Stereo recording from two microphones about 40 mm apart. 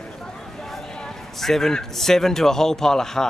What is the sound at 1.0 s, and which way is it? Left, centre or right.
A man's voice, centre.